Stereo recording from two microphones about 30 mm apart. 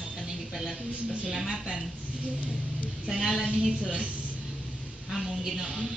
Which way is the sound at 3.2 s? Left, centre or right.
Centre.